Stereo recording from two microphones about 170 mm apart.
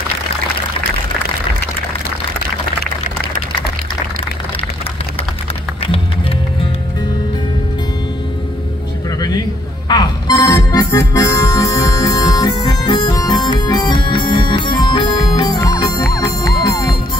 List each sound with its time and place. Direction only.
9.8 s music: 25° left (ahead or behind)